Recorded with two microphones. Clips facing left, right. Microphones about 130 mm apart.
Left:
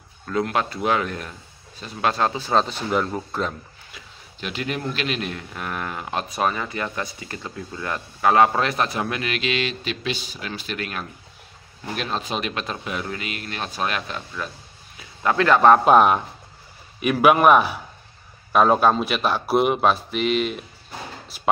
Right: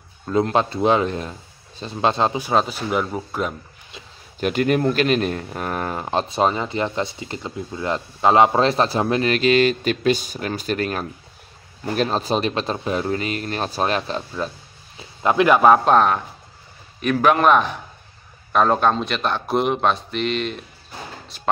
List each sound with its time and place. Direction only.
0.3 s speech: 25° right (ahead or behind); by 3.5 s 10° right (ahead or behind)
4.4 s speech: 50° right (ahead or behind); by 14.5 s 30° right (ahead or behind)
15.0 s speech: 20° right (ahead or behind)
15.8 s a man's voice: 10° left (ahead or behind)